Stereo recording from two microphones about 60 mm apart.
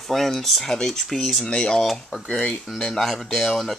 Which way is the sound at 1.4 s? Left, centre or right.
Centre.